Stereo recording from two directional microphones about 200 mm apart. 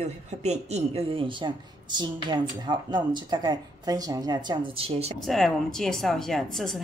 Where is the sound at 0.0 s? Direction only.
35° right (ahead or behind).